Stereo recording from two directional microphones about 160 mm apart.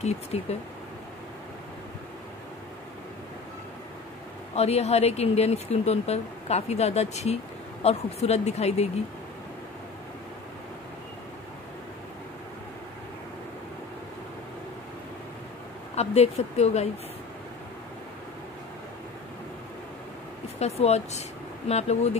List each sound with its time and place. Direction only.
0.0 s speech: 40° left (ahead or behind)
4.6 s speech: 40° left (ahead or behind)
15.9 s speech: 40° left (ahead or behind)
20.5 s speech: 40° left (ahead or behind)